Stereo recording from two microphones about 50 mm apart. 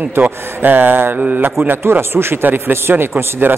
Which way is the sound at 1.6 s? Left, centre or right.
Right.